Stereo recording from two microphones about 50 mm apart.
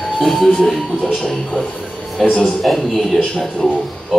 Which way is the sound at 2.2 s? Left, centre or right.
Left.